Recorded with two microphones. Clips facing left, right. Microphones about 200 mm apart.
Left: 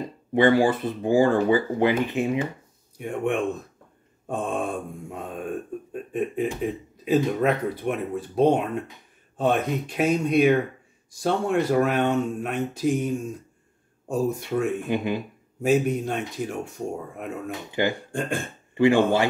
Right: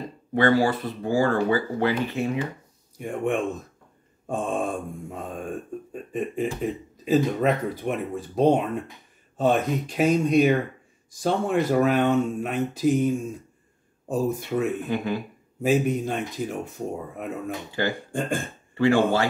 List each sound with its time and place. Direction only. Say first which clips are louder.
0.3 s speech: left 2 dB; 15° left (ahead or behind)
3.0 s speech: even; centre (ahead or behind)
14.9 s speech: left 1 dB; 20° left (ahead or behind)
15.6 s speech: left 1 dB; centre (ahead or behind)
17.6 s speech: left 4 dB; 15° left (ahead or behind)